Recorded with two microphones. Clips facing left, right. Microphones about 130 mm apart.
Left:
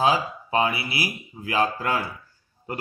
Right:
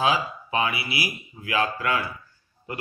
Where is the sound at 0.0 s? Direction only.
35° left (ahead or behind).